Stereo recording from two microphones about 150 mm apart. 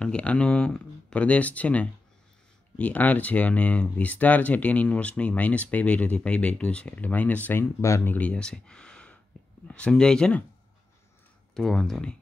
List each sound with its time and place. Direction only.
0.0 s speech: 10° left (ahead or behind)
11.5 s speech: 5° left (ahead or behind)